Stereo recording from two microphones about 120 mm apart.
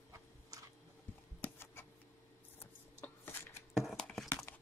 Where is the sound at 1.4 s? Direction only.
20° left (ahead or behind).